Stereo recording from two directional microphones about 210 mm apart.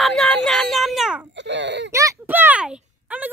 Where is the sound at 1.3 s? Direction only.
60° right (ahead or behind).